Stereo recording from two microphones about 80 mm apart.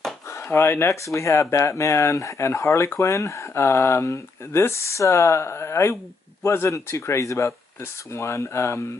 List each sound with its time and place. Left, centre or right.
0.3 s speech: left